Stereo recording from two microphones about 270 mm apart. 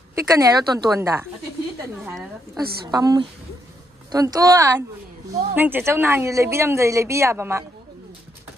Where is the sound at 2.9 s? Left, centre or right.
Centre.